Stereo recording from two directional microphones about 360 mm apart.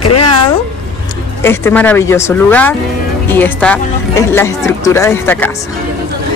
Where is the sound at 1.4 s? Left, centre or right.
Centre.